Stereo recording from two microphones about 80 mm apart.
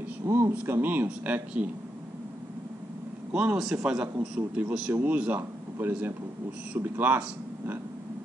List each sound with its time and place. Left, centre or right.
0.2 s speech: right; by 1.7 s centre
3.5 s a man's voice: centre; by 7.8 s right